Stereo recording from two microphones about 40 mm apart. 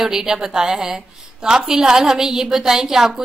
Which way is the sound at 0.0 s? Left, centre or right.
Centre.